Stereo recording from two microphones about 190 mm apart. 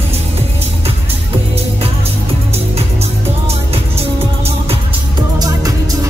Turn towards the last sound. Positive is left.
turn(degrees=-20)  # may be behind; listen again after turning